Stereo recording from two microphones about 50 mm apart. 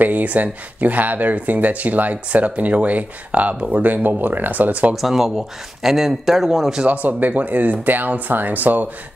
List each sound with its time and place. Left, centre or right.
0.0 s speech: right
5.0 s a man's voice: centre
6.8 s speech: right